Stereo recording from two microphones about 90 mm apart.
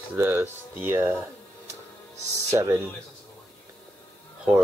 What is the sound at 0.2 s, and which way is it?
Speech, 25° right (ahead or behind).